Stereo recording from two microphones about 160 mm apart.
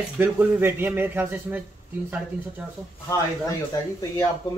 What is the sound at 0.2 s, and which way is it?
Speech, 15° right (ahead or behind).